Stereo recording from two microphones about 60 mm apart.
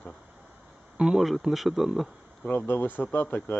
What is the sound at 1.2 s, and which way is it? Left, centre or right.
Speech, centre.